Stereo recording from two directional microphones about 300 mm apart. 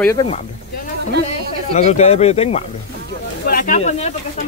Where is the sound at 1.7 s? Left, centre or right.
Left.